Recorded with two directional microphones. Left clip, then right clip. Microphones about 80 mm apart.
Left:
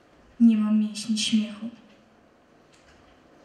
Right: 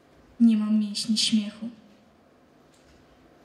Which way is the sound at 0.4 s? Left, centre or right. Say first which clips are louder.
Left 1 dB; left.